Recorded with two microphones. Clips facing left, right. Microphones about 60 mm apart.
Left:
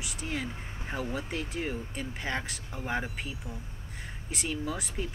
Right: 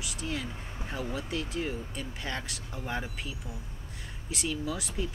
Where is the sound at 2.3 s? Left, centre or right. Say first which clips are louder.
Left 3 dB; left.